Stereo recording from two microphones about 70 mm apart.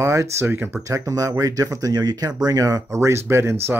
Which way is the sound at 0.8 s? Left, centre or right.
Right.